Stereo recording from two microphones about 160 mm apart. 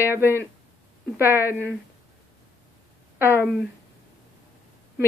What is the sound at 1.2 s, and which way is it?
Speech, 15° left (ahead or behind).